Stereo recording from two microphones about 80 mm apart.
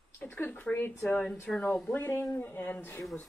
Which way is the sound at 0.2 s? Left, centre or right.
Left.